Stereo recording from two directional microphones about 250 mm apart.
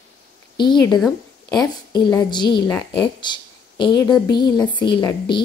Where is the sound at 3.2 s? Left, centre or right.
Centre.